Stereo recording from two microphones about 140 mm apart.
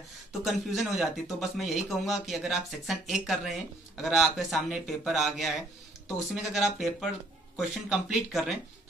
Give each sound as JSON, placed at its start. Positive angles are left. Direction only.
{"t": 0.3, "sound": "a man's voice", "side_deg": 0}